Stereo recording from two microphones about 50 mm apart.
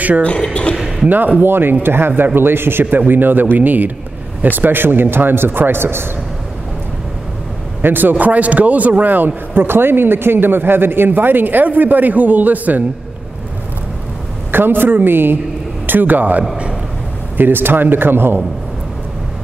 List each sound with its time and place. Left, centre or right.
0.4 s speech: centre
0.7 s a sound: centre
1.0 s a man's voice: right
2.8 s a man's voice: right
7.8 s a man's voice: right
14.5 s a man's voice: right